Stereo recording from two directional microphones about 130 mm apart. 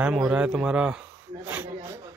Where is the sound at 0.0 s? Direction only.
5° right (ahead or behind).